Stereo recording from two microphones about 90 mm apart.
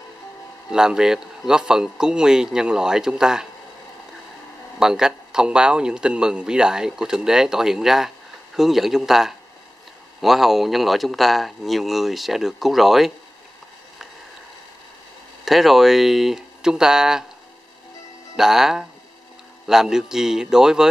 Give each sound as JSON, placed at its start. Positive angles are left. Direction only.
{"t": 0.7, "sound": "a man's voice", "side_deg": -10}
{"t": 4.7, "sound": "a man's voice", "side_deg": -5}
{"t": 15.4, "sound": "speech", "side_deg": 0}
{"t": 18.3, "sound": "a man's voice", "side_deg": -5}